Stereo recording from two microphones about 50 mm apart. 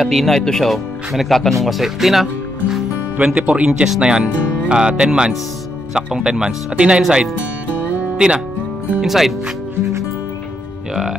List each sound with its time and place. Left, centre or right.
0.0 s speech: centre
3.3 s speech: right
3.6 s speech: centre